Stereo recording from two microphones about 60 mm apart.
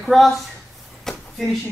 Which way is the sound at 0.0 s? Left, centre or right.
Centre.